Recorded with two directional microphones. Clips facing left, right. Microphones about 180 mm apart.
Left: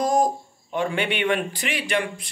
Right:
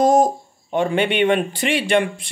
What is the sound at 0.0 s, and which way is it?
A man's voice, 25° right (ahead or behind).